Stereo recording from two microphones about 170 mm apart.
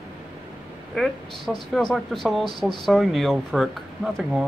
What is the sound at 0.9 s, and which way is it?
A woman's voice, 5° left (ahead or behind).